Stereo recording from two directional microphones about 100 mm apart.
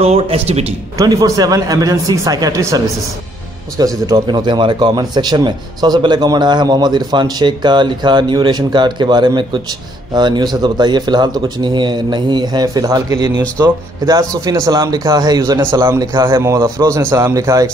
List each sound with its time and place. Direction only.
0.0 s speech: 75° right (ahead or behind)
0.9 s speech: 35° right (ahead or behind)
16.3 s speech: 30° right (ahead or behind)